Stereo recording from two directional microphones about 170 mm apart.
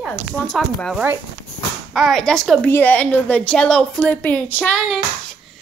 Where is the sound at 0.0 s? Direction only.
Centre (ahead or behind).